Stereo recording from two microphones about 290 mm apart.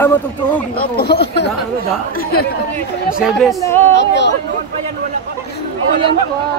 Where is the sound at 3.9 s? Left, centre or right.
Left.